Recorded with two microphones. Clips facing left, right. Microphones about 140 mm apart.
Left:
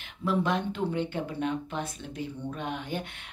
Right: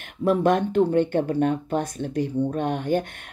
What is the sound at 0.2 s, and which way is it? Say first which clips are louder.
Speech: right 8 dB; 50° right (ahead or behind).